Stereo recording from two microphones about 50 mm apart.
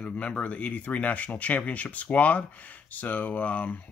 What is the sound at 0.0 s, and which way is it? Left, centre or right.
Speech, left.